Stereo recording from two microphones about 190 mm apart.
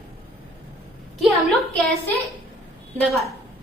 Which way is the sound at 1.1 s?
Centre (ahead or behind).